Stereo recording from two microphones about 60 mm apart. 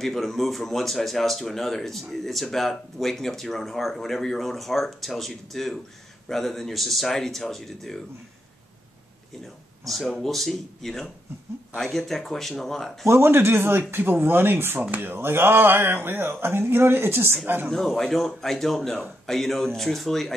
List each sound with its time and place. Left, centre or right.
0.0 s speech: centre
9.8 s speech: centre
13.1 s speech: right
17.6 s speech: centre